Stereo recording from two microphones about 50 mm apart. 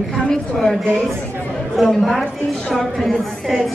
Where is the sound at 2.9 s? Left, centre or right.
Centre.